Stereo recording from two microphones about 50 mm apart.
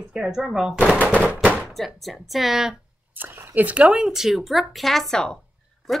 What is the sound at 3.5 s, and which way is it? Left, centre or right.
Speech, right.